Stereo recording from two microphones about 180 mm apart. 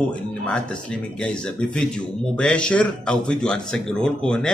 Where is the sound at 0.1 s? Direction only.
5° left (ahead or behind).